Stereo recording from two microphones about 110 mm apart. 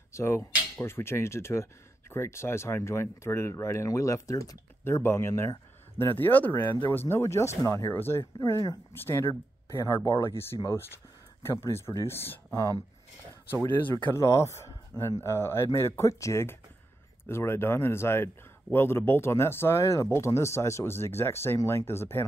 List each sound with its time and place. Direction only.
0.1 s speech: 25° left (ahead or behind)
13.5 s speech: 20° left (ahead or behind)